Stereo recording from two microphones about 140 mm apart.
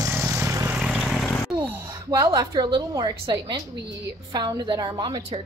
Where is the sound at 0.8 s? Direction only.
5° right (ahead or behind).